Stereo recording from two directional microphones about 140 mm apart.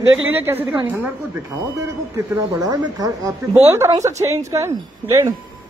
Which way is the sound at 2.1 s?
20° right (ahead or behind).